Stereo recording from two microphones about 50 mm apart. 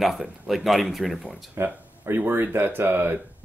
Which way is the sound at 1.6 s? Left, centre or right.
Right.